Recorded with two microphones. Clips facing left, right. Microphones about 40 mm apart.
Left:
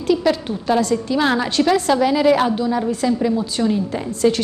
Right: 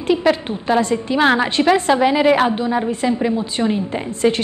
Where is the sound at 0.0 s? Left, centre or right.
Right.